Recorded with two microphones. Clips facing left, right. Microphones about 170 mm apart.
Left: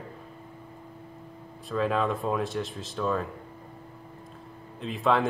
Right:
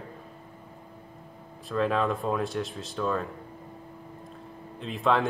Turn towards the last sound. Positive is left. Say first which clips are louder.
# even
turn(degrees=0)  # may be behind; listen again after turning